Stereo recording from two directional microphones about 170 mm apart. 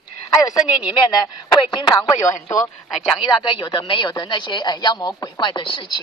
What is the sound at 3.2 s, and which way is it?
Speech, 25° left (ahead or behind).